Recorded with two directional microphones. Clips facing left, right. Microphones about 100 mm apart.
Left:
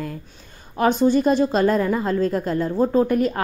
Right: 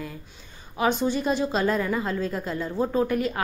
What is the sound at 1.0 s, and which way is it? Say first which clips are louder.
A woman's voice: left 7 dB; 45° left (ahead or behind).